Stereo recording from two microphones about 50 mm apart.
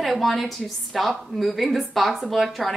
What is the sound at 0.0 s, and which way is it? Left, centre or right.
A woman's voice, centre.